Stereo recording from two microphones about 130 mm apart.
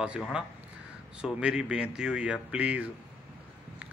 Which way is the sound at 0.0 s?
5° right (ahead or behind).